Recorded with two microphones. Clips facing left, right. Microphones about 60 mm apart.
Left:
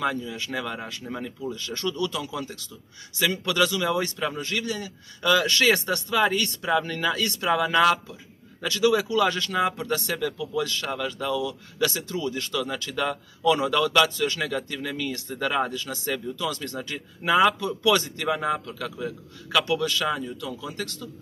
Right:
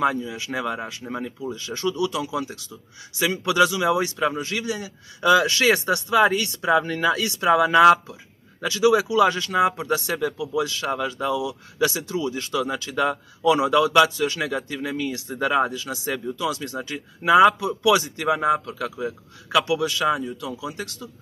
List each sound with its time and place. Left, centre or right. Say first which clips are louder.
0.0 s speech: right 4 dB; centre